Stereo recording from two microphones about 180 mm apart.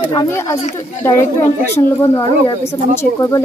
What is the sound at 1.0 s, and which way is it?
Speech, 15° left (ahead or behind).